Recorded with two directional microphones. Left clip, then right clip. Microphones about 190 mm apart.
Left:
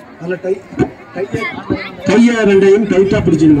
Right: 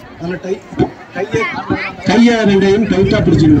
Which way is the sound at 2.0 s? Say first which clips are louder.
Left 1 dB; 25° right (ahead or behind).